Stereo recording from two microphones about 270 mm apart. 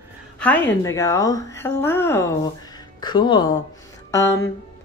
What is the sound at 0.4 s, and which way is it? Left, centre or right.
A woman's voice, centre.